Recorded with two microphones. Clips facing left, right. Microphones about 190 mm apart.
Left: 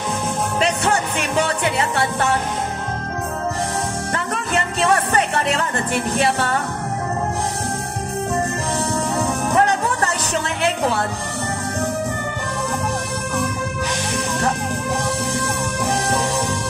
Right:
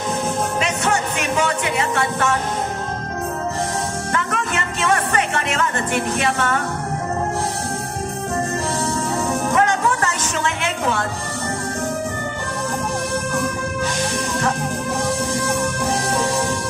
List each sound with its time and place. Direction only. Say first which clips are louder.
0.6 s music: left 1 dB; 35° left (ahead or behind)
4.1 s music: even; 35° left (ahead or behind)
9.6 s music: left 1 dB; 35° left (ahead or behind)